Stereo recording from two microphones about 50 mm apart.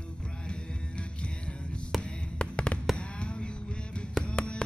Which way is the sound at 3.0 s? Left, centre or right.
Left.